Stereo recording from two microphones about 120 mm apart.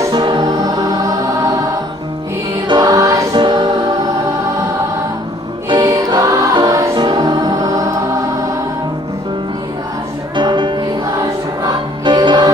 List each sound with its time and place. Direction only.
0.1 s music: 40° right (ahead or behind)
2.7 s music: 30° right (ahead or behind)
5.7 s music: 35° right (ahead or behind)
10.3 s music: 40° right (ahead or behind)